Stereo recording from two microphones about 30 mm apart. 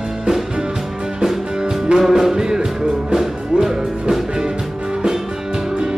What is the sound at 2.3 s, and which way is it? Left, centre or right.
Music, right.